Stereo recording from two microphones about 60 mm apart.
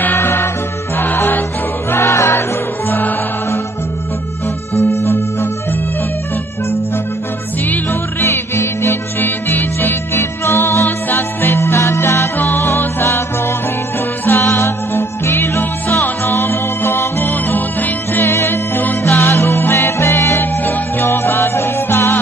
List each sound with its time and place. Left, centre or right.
0.0 s music: left
1.9 s music: left
4.7 s organ: left
7.6 s music: left
9.2 s music: left
10.1 s music: left
12.4 s music: left
14.2 s music: left
17.3 s music: left
18.2 s music: left
19.0 s music: left
20.3 s music: left